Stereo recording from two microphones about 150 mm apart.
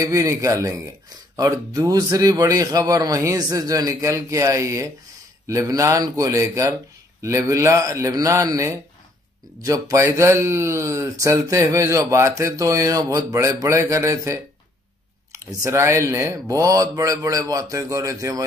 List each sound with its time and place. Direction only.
0.0 s speech: 20° right (ahead or behind)